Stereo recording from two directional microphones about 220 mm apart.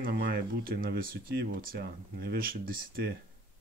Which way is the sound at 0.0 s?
45° right (ahead or behind).